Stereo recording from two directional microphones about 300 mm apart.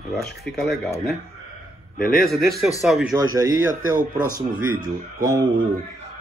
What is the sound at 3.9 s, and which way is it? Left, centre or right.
Speech, right.